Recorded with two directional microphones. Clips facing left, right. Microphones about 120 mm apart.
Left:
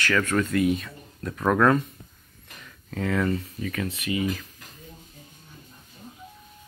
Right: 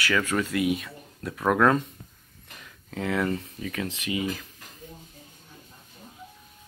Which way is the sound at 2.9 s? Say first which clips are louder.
Left 1 dB; 20° right (ahead or behind).